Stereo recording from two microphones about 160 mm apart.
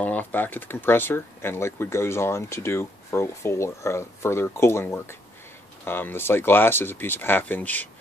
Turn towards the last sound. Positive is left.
turn(degrees=10)  # may be behind; listen again after turning